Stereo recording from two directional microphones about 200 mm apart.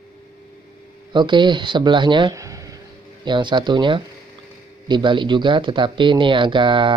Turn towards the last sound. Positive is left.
turn(degrees=-25)  # may be behind; listen again after turning